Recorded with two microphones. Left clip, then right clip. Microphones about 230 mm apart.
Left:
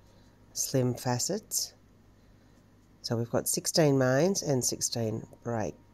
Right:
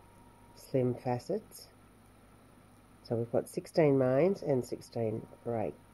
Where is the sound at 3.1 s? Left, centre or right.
Left.